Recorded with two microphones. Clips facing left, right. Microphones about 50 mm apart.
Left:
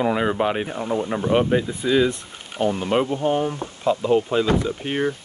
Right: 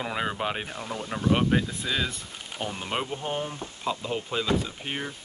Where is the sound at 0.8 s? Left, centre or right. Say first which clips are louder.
Left 9 dB; left.